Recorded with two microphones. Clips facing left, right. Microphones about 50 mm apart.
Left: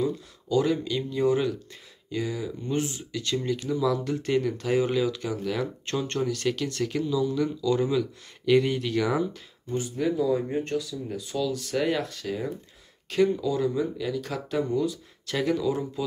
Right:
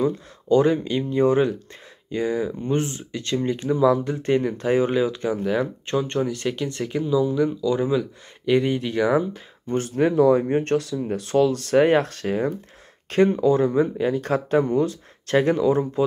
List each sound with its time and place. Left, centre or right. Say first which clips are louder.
0.0 s speech: right 5 dB; right
9.7 s speech: right 6 dB; right
13.1 s speech: right 6 dB; right